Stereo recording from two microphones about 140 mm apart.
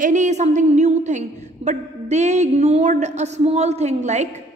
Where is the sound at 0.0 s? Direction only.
60° right (ahead or behind).